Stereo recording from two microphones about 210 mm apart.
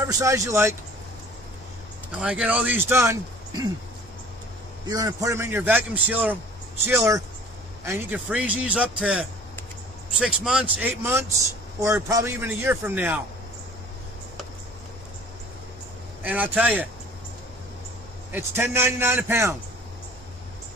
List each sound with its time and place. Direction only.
0.0 s speech: 15° right (ahead or behind)
2.1 s speech: 5° right (ahead or behind)
4.8 s a man's voice: 15° right (ahead or behind)
16.2 s speech: 5° right (ahead or behind)
18.3 s speech: 10° right (ahead or behind)